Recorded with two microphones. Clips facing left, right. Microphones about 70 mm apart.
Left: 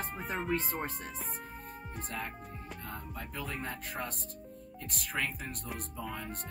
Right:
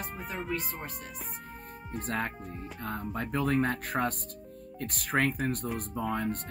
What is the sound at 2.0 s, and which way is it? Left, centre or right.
Speech, right.